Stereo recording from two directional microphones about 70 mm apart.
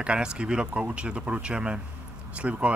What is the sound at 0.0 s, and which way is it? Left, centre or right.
Speech, centre.